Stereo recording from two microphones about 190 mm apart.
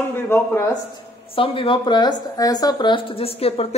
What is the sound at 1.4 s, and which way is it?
Speech, 30° left (ahead or behind).